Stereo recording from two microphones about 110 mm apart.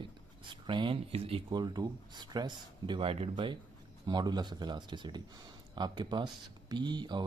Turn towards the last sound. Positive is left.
turn(degrees=-40)  # may be behind; listen again after turning